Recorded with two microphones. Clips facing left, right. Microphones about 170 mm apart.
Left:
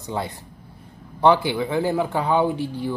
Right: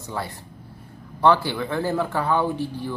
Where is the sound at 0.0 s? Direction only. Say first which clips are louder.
Left 3 dB; 20° left (ahead or behind).